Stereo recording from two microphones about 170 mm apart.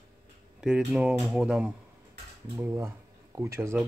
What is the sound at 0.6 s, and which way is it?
Speech, 5° right (ahead or behind).